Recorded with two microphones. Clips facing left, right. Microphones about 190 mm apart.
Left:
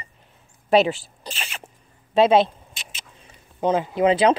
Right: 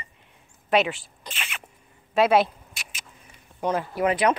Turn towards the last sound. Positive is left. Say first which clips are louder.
# left 5 dB
turn(degrees=25)  # may be behind; listen again after turning